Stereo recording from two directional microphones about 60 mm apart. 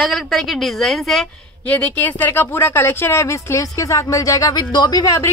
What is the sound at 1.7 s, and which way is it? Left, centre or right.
Speech, left.